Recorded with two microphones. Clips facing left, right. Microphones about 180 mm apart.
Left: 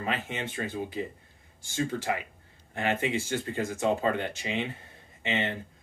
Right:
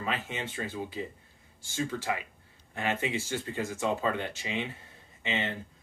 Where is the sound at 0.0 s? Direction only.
55° left (ahead or behind).